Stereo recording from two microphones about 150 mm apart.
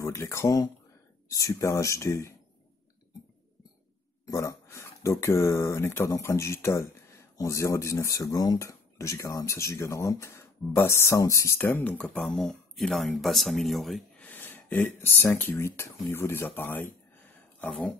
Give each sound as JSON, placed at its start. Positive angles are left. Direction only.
{"t": 0.0, "sound": "speech", "side_deg": 20}
{"t": 4.3, "sound": "speech", "side_deg": 20}